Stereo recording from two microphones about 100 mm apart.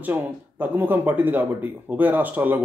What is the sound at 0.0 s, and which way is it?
Speech, 15° right (ahead or behind).